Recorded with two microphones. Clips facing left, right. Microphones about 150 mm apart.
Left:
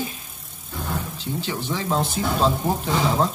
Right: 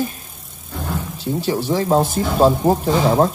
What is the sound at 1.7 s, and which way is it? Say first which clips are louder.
Speech: right 7 dB; 40° right (ahead or behind).